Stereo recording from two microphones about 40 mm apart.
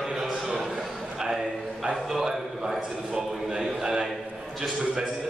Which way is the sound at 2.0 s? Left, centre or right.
Centre.